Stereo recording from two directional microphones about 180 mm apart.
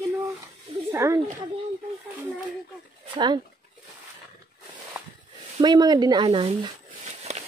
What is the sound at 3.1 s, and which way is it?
Speech, 25° right (ahead or behind).